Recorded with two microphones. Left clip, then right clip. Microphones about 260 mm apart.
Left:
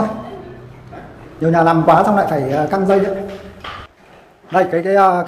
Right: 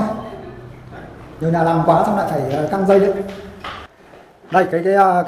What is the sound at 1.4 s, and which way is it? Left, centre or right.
A man's voice, centre.